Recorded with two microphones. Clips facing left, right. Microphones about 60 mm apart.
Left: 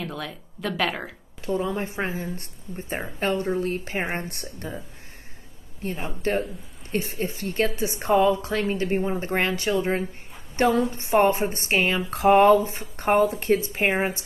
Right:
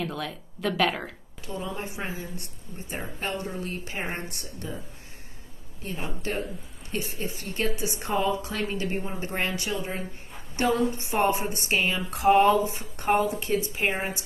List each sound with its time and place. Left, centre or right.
0.0 s speech: centre
1.4 s a woman's voice: left
4.0 s speech: left
4.3 s a woman's voice: left
6.9 s a woman's voice: left
7.7 s a woman's voice: left
13.1 s a woman's voice: left